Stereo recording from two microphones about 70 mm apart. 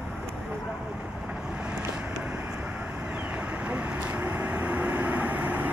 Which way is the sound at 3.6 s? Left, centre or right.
Centre.